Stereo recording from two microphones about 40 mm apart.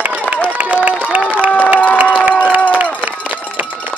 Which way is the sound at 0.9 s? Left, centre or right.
Right.